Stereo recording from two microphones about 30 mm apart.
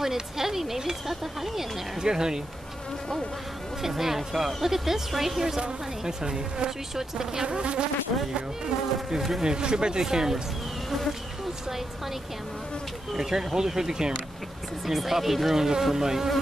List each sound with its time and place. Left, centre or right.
0.0 s speech: centre
2.0 s speech: right
3.8 s speech: centre
6.0 s speech: right
7.4 s insect: right
9.4 s speech: right
10.0 s speech: centre
10.9 s bee: centre
13.1 s speech: centre
14.9 s speech: centre